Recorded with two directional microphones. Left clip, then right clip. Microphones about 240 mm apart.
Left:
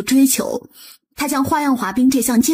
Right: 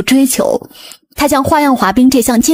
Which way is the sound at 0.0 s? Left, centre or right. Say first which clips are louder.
Right 5 dB; right.